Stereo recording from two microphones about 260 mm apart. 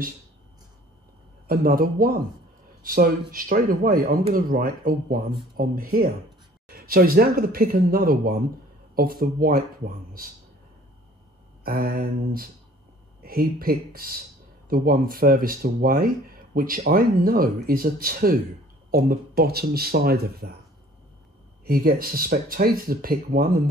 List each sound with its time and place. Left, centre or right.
1.5 s speech: right
11.6 s speech: right
21.6 s speech: right